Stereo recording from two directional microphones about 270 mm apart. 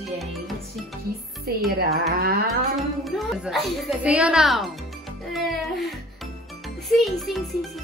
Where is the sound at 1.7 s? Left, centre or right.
Right.